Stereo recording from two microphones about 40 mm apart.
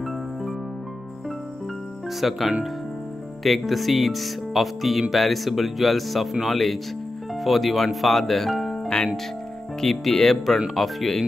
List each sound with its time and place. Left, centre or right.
2.1 s speech: centre
8.8 s speech: centre